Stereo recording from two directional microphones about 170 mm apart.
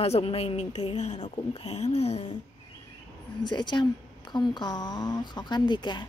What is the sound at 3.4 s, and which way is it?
Speech, 25° left (ahead or behind).